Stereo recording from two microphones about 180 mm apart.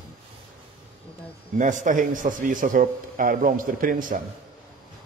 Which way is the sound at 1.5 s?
45° right (ahead or behind).